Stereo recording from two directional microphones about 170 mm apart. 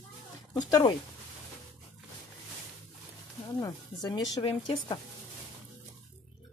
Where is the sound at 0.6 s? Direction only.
20° left (ahead or behind).